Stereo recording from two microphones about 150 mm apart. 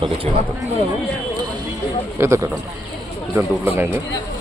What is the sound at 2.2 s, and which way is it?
Speech, 15° right (ahead or behind).